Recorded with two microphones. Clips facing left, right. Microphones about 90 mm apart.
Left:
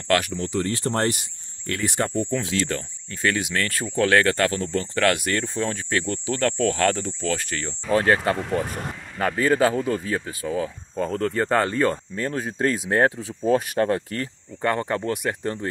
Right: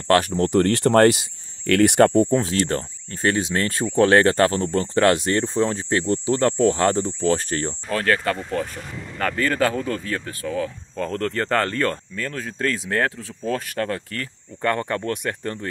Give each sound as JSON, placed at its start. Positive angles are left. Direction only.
{"t": 0.1, "sound": "speech", "side_deg": -35}
{"t": 0.4, "sound": "speech", "side_deg": -55}
{"t": 1.7, "sound": "speech", "side_deg": -70}
{"t": 2.6, "sound": "speech", "side_deg": -35}
{"t": 7.9, "sound": "speech", "side_deg": 20}
{"t": 12.2, "sound": "speech", "side_deg": 20}
{"t": 14.6, "sound": "speech", "side_deg": 10}